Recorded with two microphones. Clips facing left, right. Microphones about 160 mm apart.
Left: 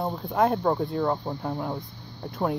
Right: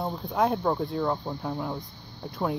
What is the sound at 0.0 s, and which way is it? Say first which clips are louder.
Speech: left 2 dB; 5° left (ahead or behind).